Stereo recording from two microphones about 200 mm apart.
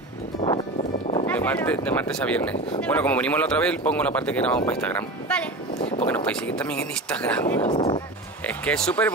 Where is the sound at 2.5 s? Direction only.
35° left (ahead or behind).